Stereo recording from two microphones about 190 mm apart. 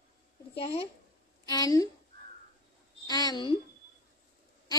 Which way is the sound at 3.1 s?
20° left (ahead or behind).